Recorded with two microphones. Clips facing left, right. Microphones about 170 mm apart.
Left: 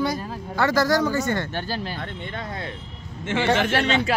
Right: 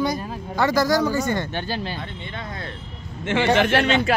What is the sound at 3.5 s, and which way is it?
Speech, 60° right (ahead or behind).